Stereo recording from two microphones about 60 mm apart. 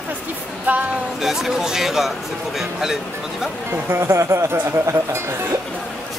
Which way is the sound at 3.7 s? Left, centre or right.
Right.